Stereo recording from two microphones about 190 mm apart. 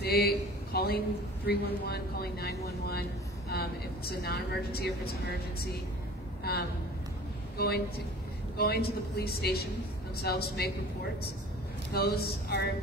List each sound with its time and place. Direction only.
0.0 s a man's voice: 55° left (ahead or behind)
7.5 s a woman's voice: 55° left (ahead or behind)
11.9 s a man's voice: 55° left (ahead or behind)